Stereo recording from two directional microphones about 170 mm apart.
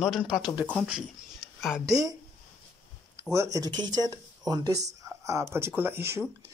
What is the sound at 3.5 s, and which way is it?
Speech, 25° right (ahead or behind).